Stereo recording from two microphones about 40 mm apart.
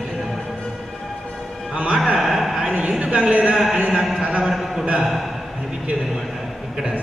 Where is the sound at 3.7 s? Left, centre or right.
Right.